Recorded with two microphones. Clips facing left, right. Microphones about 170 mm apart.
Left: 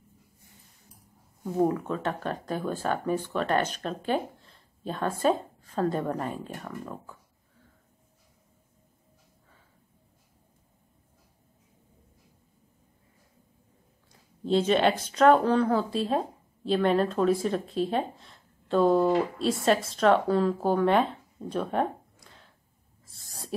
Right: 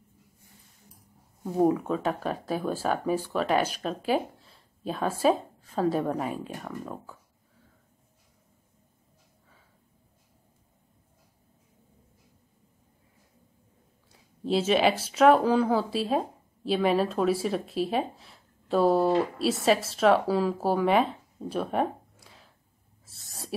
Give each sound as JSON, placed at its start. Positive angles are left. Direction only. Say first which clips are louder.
{"t": 1.4, "sound": "speech", "louder": "right 2 dB", "side_deg": -10}
{"t": 14.4, "sound": "speech", "louder": "even", "side_deg": -5}
{"t": 23.0, "sound": "owl", "louder": "right 1 dB", "side_deg": -5}